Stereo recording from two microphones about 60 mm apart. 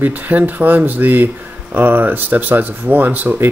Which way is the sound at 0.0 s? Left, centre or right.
Right.